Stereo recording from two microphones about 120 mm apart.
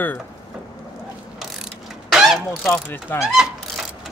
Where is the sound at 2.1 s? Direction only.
Centre (ahead or behind).